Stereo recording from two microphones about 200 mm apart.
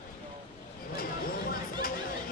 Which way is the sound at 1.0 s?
45° left (ahead or behind).